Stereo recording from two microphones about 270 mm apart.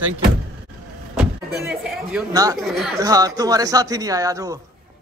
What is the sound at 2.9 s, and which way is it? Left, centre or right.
Speech, centre.